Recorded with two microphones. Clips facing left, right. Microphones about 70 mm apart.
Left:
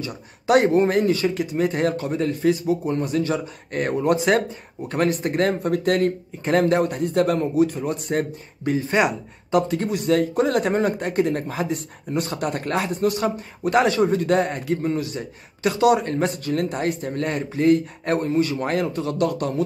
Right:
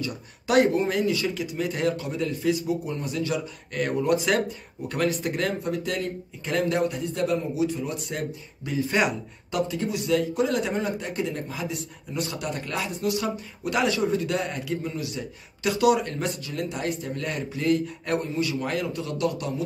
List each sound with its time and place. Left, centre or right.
0.1 s speech: left